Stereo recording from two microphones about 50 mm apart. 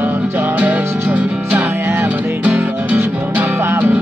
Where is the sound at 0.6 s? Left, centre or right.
Right.